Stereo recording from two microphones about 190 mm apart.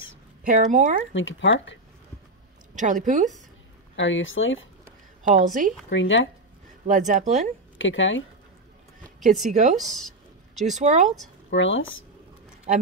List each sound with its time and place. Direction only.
0.5 s a woman's voice: 40° right (ahead or behind)
1.1 s speech: 85° left
2.7 s a woman's voice: 40° right (ahead or behind)
3.9 s speech: 80° left
5.2 s a woman's voice: 45° right (ahead or behind)
5.9 s speech: 75° left (ahead or behind)
6.9 s a woman's voice: 40° right (ahead or behind)
7.7 s speech: 85° left
9.2 s a woman's voice: 40° right (ahead or behind)
9.8 s a sound: centre (ahead or behind)
10.8 s a woman's voice: 40° right (ahead or behind)
11.5 s speech: 85° left